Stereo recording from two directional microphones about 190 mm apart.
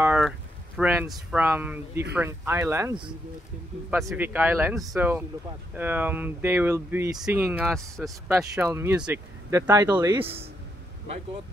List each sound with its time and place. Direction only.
0.0 s a sound: 5° right (ahead or behind)
0.7 s speech: 5° right (ahead or behind)
4.2 s speech: 10° right (ahead or behind)
10.2 s speech: 30° right (ahead or behind)